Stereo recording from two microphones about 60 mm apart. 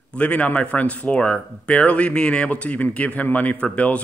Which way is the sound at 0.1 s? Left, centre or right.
Left.